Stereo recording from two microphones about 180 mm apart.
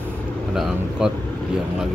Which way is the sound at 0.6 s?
5° right (ahead or behind).